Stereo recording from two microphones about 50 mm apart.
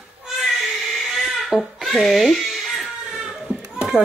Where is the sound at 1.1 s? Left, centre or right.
Centre.